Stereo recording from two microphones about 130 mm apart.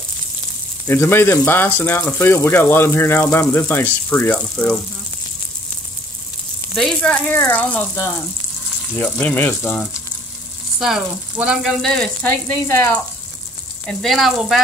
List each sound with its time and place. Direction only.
0.8 s speech: 20° left (ahead or behind)
6.7 s speech: centre (ahead or behind)
10.8 s speech: 5° right (ahead or behind)
11.8 s speech: 5° left (ahead or behind)
13.8 s speech: centre (ahead or behind)